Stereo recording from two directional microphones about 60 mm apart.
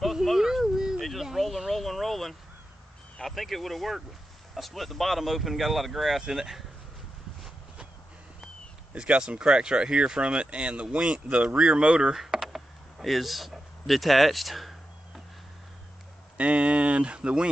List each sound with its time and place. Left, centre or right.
0.0 s a sound: centre
1.0 s speech: centre
7.4 s horse: centre
8.9 s speech: centre
12.2 s a sound: centre
16.3 s speech: right